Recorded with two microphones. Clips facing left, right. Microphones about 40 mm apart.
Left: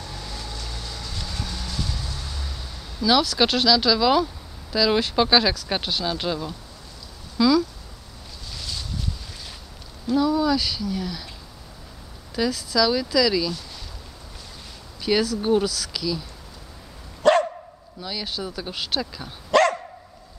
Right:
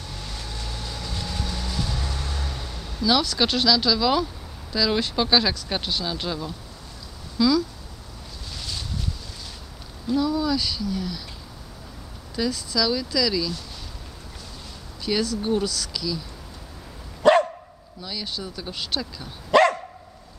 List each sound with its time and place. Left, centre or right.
0.8 s train: centre
2.0 s vehicle: right
3.0 s speech: centre
10.1 s speech: centre
12.4 s speech: centre
15.1 s speech: centre
15.6 s speech: centre
17.2 s dog: centre
18.0 s speech: centre
19.5 s dog: centre